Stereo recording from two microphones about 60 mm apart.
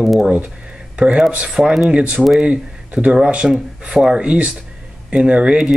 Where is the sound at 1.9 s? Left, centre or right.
Centre.